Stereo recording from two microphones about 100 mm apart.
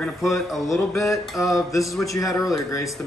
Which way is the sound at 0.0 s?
Centre (ahead or behind).